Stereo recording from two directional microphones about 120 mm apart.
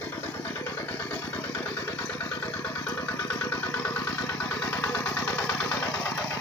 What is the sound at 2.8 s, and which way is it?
Vehicle, 15° left (ahead or behind).